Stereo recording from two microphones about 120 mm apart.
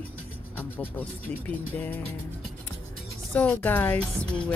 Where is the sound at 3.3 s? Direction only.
10° left (ahead or behind).